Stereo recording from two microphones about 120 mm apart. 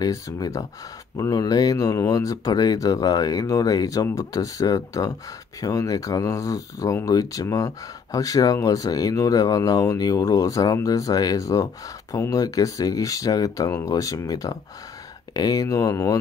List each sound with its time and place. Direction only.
0.0 s speech: 30° left (ahead or behind)